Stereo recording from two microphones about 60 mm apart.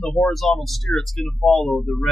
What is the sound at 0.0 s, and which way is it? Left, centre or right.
Speech, centre.